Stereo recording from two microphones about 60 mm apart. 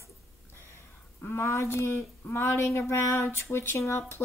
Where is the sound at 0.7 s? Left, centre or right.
Left.